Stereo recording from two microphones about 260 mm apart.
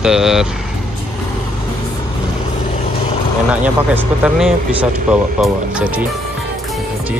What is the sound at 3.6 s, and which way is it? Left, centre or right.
Speech, centre.